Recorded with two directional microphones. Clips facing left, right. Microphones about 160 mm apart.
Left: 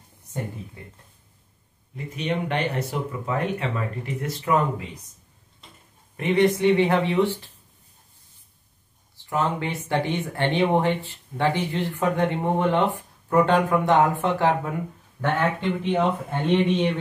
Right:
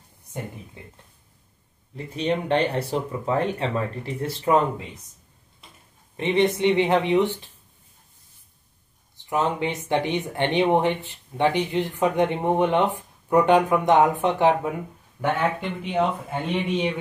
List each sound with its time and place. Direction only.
2.0 s speech: 30° right (ahead or behind)
6.1 s speech: 25° right (ahead or behind)
9.1 s speech: 20° right (ahead or behind)